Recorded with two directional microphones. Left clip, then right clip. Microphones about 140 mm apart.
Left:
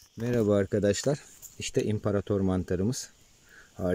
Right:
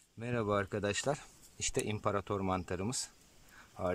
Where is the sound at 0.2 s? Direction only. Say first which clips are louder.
Left 8 dB; 20° left (ahead or behind).